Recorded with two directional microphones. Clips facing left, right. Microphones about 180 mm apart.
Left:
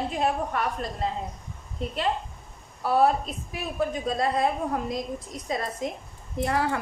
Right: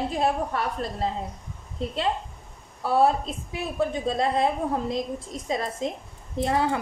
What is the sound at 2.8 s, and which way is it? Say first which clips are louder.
A woman's voice: right 1 dB; 25° right (ahead or behind).